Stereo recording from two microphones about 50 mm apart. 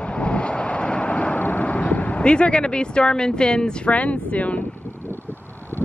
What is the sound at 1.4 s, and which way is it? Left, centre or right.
Speech, left.